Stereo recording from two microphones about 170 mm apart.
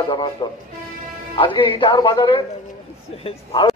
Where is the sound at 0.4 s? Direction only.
30° left (ahead or behind).